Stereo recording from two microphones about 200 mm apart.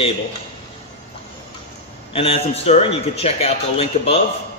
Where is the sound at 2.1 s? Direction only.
30° left (ahead or behind).